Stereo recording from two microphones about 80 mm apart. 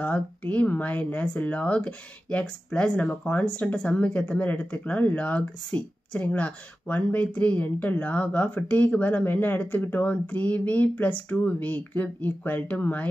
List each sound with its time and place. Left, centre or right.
0.0 s speech: centre